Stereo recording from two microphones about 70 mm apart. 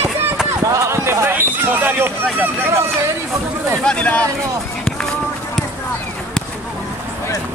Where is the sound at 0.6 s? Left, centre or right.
Right.